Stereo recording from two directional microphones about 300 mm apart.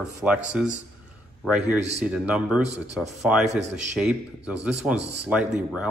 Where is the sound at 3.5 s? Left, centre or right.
Right.